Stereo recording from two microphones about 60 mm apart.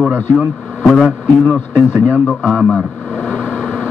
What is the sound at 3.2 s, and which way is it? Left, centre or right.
Vehicle, left.